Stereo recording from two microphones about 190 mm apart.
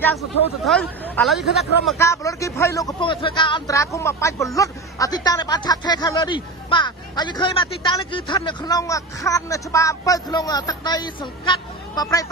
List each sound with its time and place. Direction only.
0.7 s speech: 5° left (ahead or behind)
2.0 s speech: 15° left (ahead or behind)